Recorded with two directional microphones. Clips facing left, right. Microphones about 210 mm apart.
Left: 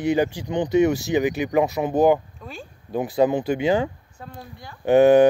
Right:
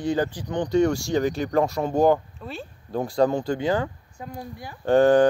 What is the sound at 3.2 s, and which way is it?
Speech, 20° left (ahead or behind).